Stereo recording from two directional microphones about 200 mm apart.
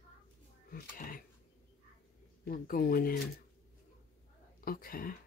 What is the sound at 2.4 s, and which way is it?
Speech, 45° left (ahead or behind).